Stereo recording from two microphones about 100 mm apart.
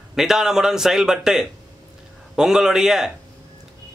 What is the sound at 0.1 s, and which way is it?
A man's voice, 5° right (ahead or behind).